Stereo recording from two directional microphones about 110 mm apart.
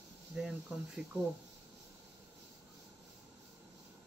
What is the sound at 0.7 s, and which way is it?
Speech, 10° right (ahead or behind).